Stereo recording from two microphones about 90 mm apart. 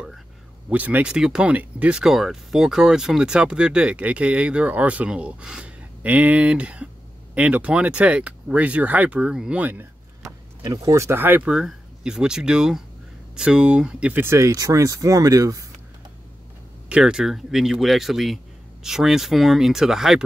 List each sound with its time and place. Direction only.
0.7 s speech: 15° right (ahead or behind)
10.2 s speech: 40° right (ahead or behind); by 11.5 s 20° right (ahead or behind)
11.5 s speech: 10° right (ahead or behind)
14.2 s speech: 30° right (ahead or behind)
16.9 s speech: 10° right (ahead or behind)